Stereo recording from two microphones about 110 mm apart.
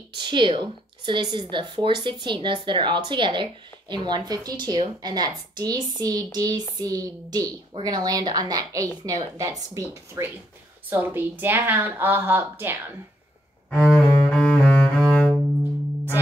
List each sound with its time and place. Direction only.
0.1 s a woman's voice: 45° right (ahead or behind); by 10.2 s 30° right (ahead or behind)
10.9 s a woman's voice: 20° right (ahead or behind)
13.7 s cello: 10° left (ahead or behind)